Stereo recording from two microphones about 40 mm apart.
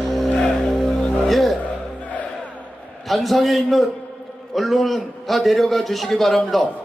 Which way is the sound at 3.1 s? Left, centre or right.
Centre.